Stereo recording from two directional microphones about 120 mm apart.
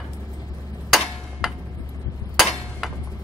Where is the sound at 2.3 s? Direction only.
Centre (ahead or behind).